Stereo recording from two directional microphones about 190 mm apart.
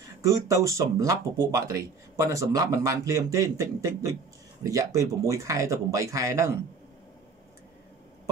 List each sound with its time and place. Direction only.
0.2 s speech: 15° right (ahead or behind)